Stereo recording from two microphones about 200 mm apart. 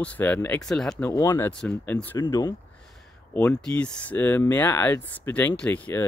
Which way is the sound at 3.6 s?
5° left (ahead or behind).